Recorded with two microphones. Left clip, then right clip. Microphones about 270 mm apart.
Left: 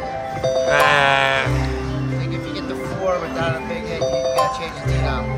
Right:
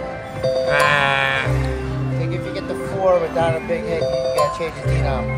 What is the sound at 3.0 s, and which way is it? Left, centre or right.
Music, right.